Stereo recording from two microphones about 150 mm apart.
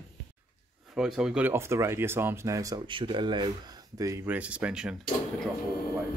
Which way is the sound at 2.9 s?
35° right (ahead or behind).